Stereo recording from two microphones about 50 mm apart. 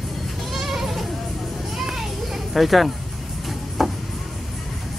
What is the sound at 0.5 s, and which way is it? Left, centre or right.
Goat, centre.